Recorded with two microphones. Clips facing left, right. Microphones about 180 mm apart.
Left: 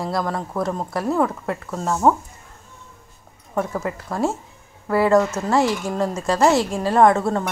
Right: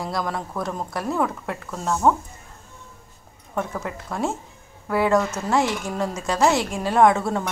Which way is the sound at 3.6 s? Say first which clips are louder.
Left 4 dB; 5° left (ahead or behind).